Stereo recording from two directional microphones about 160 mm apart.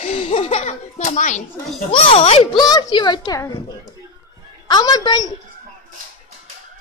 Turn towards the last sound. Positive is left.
turn(degrees=25)  # may be behind; listen again after turning